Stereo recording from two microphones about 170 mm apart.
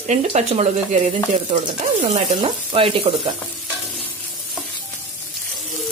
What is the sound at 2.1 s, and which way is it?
Speech, 35° right (ahead or behind).